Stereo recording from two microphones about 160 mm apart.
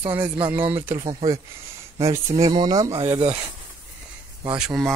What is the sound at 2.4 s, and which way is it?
Speech, 25° right (ahead or behind).